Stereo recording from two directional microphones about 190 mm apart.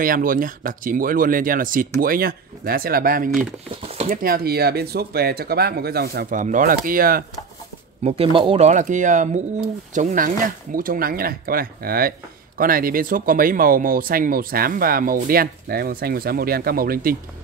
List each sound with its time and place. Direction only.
0.0 s speech: 45° right (ahead or behind)
8.0 s speech: 30° right (ahead or behind); by 17.2 s 50° right (ahead or behind)